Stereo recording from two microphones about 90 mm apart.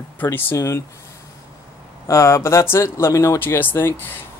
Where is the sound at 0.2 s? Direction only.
25° left (ahead or behind).